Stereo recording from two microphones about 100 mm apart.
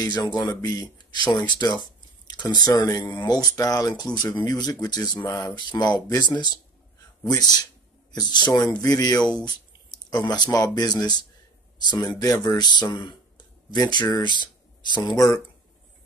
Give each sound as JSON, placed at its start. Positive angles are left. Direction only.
{"t": 0.0, "sound": "speech", "side_deg": 45}